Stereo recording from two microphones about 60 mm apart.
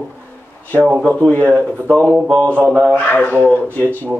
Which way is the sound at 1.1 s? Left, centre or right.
Left.